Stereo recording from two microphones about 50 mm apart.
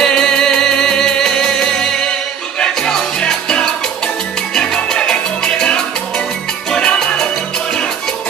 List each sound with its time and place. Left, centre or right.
0.0 s music: centre
4.6 s salsa music: centre